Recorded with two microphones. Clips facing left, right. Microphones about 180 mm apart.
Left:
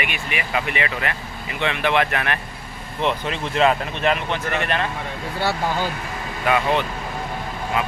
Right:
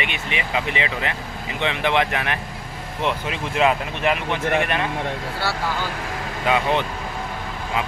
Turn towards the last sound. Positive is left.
turn(degrees=-15)  # may be behind; listen again after turning